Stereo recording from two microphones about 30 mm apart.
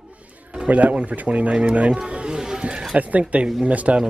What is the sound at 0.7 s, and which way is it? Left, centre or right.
Speech, right.